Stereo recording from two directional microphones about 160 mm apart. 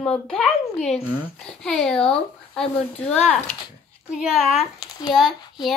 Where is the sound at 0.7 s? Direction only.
45° left (ahead or behind).